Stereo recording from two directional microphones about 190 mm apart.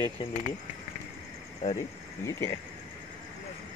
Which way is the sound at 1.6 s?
40° left (ahead or behind).